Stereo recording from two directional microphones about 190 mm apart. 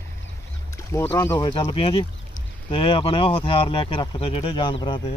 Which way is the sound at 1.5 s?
30° left (ahead or behind).